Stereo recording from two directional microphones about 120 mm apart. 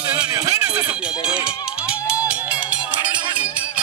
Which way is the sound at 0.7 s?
10° right (ahead or behind).